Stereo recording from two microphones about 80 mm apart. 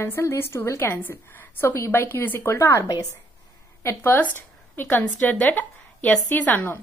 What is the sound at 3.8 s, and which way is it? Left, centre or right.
A woman's voice, left.